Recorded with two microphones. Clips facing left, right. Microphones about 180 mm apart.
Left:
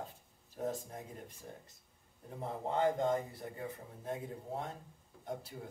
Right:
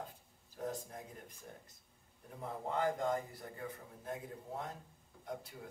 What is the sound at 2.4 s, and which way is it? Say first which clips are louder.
A man's voice: left 3 dB; 25° left (ahead or behind).